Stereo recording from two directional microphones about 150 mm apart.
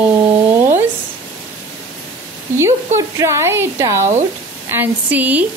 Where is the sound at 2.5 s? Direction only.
15° right (ahead or behind).